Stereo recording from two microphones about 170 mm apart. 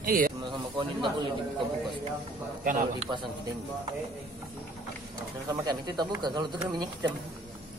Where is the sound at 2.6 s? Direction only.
50° right (ahead or behind).